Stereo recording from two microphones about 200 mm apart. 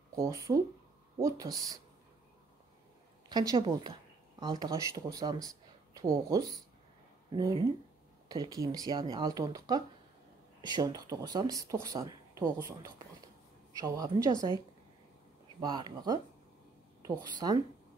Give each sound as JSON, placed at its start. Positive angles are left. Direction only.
{"t": 0.1, "sound": "speech", "side_deg": -15}
{"t": 3.3, "sound": "speech", "side_deg": -20}
{"t": 7.2, "sound": "speech", "side_deg": -20}
{"t": 15.6, "sound": "speech", "side_deg": -20}